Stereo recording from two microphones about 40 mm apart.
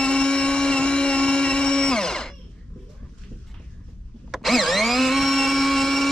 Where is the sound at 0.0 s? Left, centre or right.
Left.